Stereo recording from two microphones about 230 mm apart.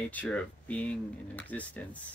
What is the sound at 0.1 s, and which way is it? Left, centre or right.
Speech, centre.